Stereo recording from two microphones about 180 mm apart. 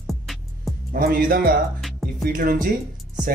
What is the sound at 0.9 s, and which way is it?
Speech, 50° right (ahead or behind).